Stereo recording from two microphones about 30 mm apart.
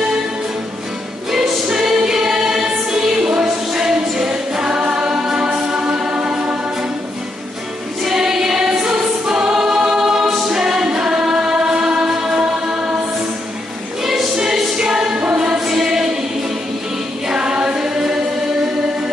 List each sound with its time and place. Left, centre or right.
1.3 s music: centre
2.0 s choir: centre
3.3 s music: right
4.3 s choir: right
5.0 s music: right
8.1 s choir: centre
12.1 s music: centre
14.3 s music: right
15.3 s choir: right
15.6 s choir: centre
17.3 s music: right